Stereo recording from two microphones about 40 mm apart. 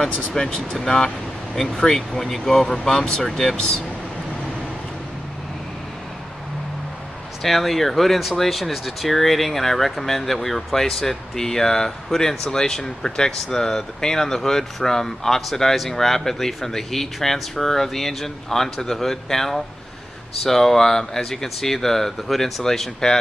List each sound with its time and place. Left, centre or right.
0.3 s speech: centre
3.5 s speech: left
7.4 s speech: centre